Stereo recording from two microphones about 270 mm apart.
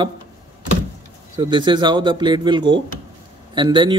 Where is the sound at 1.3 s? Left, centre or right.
Centre.